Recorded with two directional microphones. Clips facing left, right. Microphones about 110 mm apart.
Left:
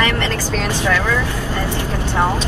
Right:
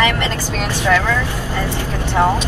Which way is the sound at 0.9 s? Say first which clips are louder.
Right 1 dB; 15° left (ahead or behind).